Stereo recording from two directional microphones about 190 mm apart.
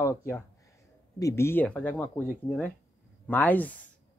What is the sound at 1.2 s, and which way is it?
Speech, 15° left (ahead or behind).